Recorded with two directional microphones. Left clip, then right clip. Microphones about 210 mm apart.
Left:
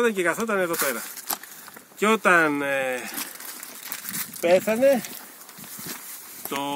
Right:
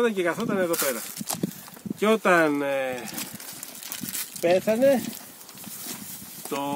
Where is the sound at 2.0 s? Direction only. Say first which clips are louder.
Left 1 dB; 5° left (ahead or behind).